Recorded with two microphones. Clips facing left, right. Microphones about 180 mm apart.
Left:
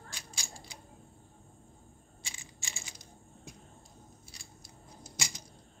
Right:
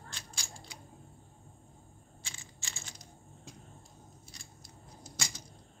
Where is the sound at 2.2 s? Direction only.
15° left (ahead or behind).